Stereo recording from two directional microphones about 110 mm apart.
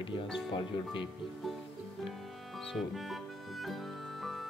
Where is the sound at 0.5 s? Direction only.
50° left (ahead or behind).